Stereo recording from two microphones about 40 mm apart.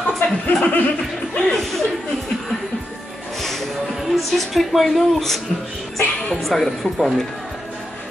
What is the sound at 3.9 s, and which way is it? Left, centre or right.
A woman's voice, centre.